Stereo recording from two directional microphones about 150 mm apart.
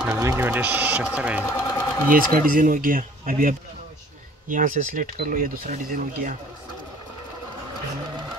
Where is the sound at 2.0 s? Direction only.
65° right (ahead or behind).